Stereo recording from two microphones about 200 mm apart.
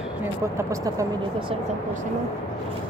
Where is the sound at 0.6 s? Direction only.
15° right (ahead or behind).